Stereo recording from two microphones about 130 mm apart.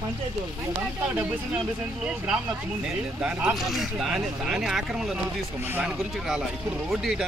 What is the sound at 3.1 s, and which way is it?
Speech, 5° right (ahead or behind).